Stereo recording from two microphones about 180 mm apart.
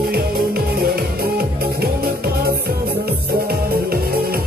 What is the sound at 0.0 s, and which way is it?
Music, 60° right (ahead or behind).